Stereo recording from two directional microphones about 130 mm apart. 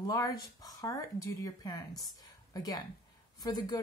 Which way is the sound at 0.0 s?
25° left (ahead or behind).